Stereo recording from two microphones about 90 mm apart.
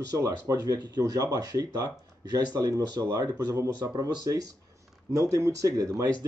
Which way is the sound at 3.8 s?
55° right (ahead or behind).